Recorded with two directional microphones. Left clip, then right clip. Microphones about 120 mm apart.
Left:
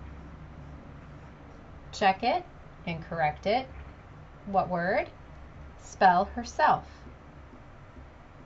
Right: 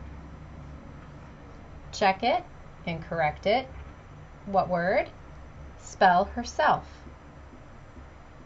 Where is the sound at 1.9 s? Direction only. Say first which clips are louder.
Right 1 dB; 20° right (ahead or behind).